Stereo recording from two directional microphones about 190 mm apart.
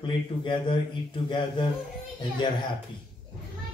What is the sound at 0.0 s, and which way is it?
Speech, 25° left (ahead or behind).